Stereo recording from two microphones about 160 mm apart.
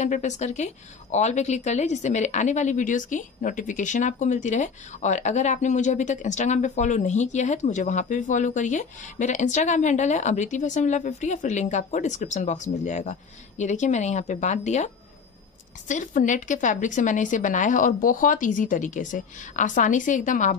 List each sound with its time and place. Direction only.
0.0 s a woman's voice: 50° left (ahead or behind)
15.9 s a woman's voice: 55° left (ahead or behind)